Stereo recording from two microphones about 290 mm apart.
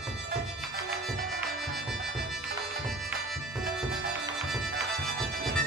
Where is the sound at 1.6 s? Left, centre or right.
Centre.